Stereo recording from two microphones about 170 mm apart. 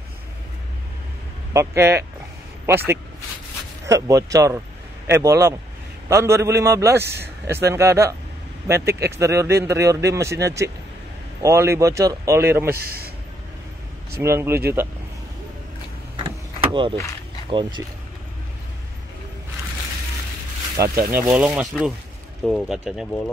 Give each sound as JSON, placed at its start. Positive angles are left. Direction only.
{"t": 1.5, "sound": "speech", "side_deg": -15}
{"t": 12.6, "sound": "a man's voice", "side_deg": -65}
{"t": 14.1, "sound": "speech", "side_deg": -15}
{"t": 16.2, "sound": "vehicle", "side_deg": -30}
{"t": 17.5, "sound": "speech", "side_deg": -30}
{"t": 20.8, "sound": "speech", "side_deg": -20}
{"t": 21.3, "sound": "speech", "side_deg": -5}